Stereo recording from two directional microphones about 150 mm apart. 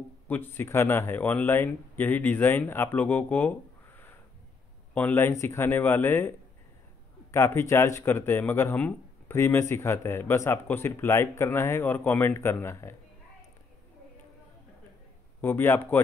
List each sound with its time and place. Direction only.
0.3 s speech: 15° left (ahead or behind)
15.4 s speech: 15° left (ahead or behind)